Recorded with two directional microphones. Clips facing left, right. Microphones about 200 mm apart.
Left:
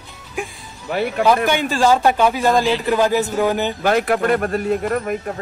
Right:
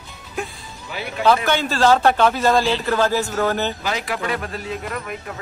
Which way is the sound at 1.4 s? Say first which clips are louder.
Left 1 dB; 10° left (ahead or behind).